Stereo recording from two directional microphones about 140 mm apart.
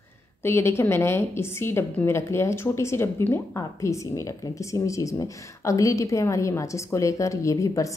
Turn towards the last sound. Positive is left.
turn(degrees=20)  # may be behind; listen again after turning